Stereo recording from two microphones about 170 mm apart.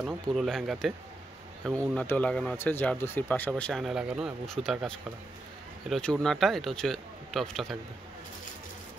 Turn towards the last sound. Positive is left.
turn(degrees=0)  # may be behind; listen again after turning